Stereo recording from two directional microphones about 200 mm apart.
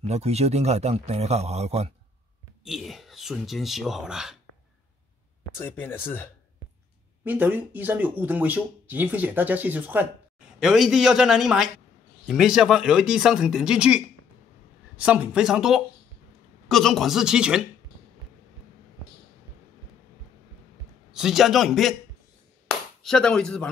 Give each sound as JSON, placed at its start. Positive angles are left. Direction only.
{"t": 0.0, "sound": "a man's voice", "side_deg": -30}
{"t": 2.6, "sound": "speech", "side_deg": 0}
{"t": 5.6, "sound": "speech", "side_deg": 10}
{"t": 7.2, "sound": "speech", "side_deg": -10}
{"t": 21.1, "sound": "speech", "side_deg": 0}
{"t": 23.0, "sound": "speech", "side_deg": 5}